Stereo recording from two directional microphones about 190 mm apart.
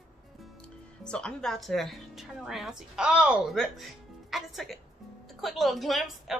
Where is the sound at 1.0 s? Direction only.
5° left (ahead or behind).